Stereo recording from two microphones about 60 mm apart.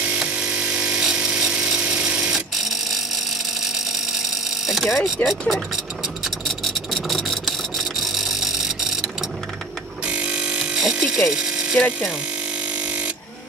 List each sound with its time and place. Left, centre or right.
0.4 s tools: centre
2.3 s alarm clock: centre
4.6 s mechanisms: centre
6.2 s a sound: centre
10.0 s a sound: right
10.8 s electric shaver: centre